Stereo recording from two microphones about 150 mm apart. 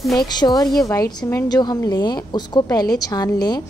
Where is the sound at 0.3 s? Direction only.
25° left (ahead or behind).